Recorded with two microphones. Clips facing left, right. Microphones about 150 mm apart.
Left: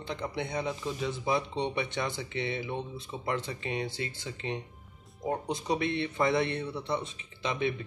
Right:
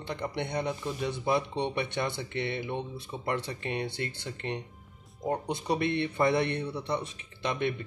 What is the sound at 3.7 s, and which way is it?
A man's voice, 60° right (ahead or behind).